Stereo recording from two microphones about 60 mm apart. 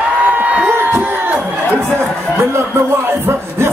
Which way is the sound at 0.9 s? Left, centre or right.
Right.